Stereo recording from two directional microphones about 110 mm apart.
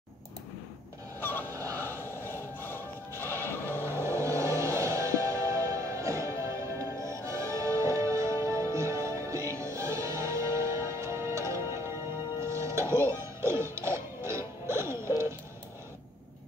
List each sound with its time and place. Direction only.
1.2 s a sound: 20° left (ahead or behind)
1.5 s honk: 30° right (ahead or behind)
1.8 s neigh: 20° left (ahead or behind)
3.8 s music: 25° right (ahead or behind)